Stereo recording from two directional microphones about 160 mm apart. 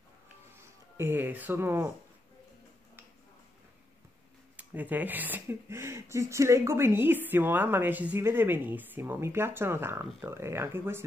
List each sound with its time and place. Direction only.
0.9 s speech: 15° right (ahead or behind)
4.6 s speech: 10° right (ahead or behind)